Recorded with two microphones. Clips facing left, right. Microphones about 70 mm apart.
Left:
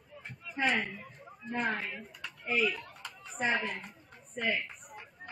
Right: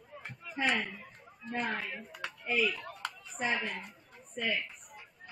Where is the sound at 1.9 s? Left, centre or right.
Right.